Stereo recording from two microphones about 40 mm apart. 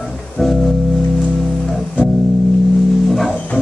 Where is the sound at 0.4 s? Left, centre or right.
Centre.